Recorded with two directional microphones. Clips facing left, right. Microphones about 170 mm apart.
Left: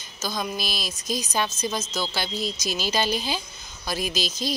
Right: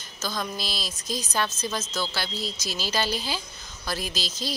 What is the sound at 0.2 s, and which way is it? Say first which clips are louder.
Speech: left 2 dB; 15° left (ahead or behind).